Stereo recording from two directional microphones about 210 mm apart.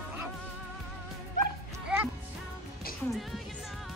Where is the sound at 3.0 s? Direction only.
Centre (ahead or behind).